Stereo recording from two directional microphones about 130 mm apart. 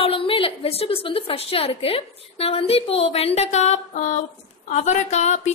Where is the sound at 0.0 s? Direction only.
45° left (ahead or behind).